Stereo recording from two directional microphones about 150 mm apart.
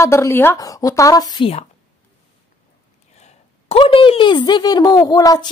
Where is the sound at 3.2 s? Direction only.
40° left (ahead or behind).